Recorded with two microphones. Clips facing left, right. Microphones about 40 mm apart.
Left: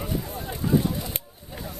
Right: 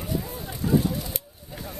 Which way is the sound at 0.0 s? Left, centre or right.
Left.